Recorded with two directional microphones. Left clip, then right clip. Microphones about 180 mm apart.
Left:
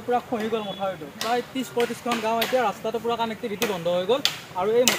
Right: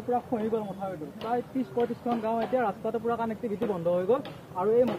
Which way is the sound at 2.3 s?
35° left (ahead or behind).